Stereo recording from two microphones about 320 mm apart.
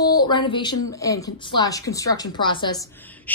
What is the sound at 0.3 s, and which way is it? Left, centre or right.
A woman's voice, centre.